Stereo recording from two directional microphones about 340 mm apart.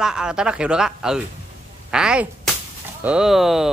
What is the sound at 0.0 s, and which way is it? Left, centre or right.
Speech, centre.